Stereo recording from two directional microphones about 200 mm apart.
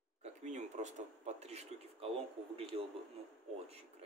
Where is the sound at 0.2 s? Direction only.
35° right (ahead or behind).